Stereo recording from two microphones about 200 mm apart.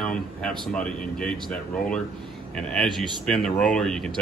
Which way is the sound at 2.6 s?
5° left (ahead or behind).